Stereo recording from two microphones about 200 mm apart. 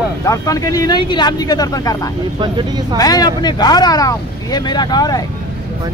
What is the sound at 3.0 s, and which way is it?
Speech, 20° left (ahead or behind).